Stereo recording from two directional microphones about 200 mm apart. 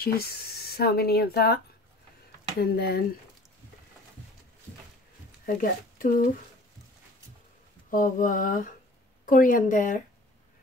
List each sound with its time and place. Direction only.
0.0 s speech: 50° left (ahead or behind)
2.6 s speech: 50° left (ahead or behind)
5.5 s speech: 45° left (ahead or behind)
7.9 s speech: 40° left (ahead or behind)